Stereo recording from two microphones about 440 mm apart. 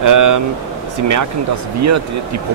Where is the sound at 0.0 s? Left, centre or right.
Right.